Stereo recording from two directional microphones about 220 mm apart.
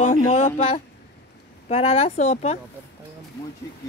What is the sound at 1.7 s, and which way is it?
Speech, 25° left (ahead or behind).